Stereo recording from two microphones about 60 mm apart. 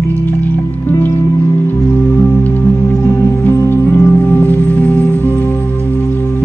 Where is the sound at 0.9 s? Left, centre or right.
Left.